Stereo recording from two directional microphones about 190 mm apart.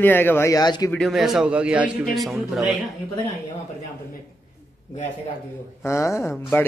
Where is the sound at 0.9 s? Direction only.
Centre (ahead or behind).